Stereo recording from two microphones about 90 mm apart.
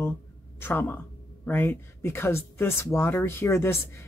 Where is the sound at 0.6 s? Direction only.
25° left (ahead or behind).